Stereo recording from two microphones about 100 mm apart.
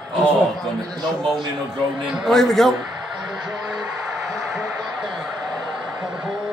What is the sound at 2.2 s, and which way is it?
Speech, centre (ahead or behind).